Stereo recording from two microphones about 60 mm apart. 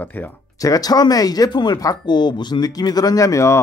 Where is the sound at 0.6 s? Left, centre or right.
Left.